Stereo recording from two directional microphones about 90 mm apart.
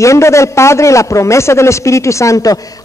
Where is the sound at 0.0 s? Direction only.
35° left (ahead or behind).